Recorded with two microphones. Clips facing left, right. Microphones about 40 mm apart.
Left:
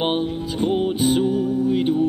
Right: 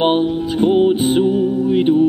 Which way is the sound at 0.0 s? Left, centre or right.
Right.